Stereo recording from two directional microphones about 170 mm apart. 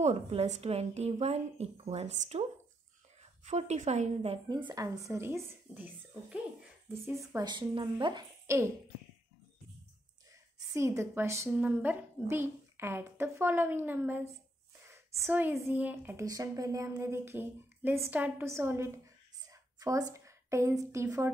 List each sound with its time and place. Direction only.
0.0 s a woman's voice: 40° right (ahead or behind); by 8.6 s 20° right (ahead or behind)
10.7 s a woman's voice: 15° right (ahead or behind)